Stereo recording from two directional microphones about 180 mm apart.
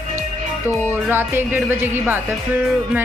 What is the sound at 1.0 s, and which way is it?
Speech, 10° right (ahead or behind).